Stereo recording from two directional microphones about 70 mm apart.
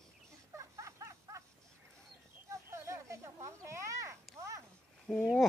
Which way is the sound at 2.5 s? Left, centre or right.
Right.